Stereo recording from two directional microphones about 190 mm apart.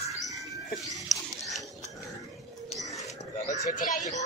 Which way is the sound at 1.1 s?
Centre (ahead or behind).